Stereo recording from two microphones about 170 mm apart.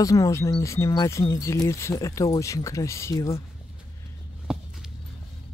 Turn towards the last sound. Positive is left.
turn(degrees=-5)  # may be behind; listen again after turning